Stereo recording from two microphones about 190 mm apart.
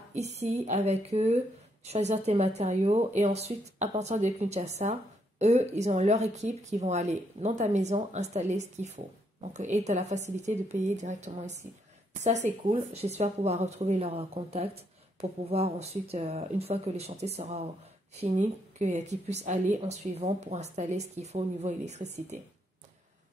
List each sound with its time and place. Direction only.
0.1 s speech: 35° right (ahead or behind)